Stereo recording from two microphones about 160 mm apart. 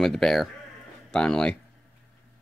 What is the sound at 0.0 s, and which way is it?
Speech, centre (ahead or behind).